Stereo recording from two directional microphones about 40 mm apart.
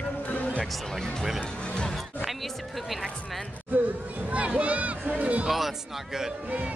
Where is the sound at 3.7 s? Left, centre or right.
Right.